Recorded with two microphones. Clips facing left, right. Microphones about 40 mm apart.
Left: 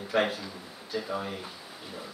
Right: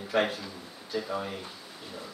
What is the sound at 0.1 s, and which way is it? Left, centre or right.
A man's voice, centre.